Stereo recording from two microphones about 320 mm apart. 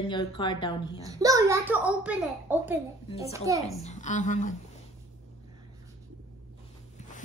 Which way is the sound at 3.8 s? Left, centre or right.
Left.